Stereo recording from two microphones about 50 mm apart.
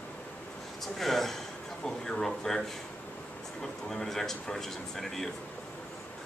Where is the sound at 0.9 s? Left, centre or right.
Centre.